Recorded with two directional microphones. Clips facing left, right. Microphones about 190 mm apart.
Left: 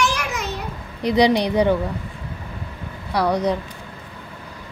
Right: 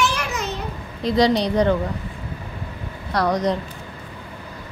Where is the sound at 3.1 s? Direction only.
10° left (ahead or behind).